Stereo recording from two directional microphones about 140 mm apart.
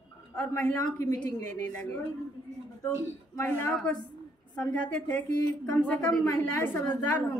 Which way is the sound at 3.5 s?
15° left (ahead or behind).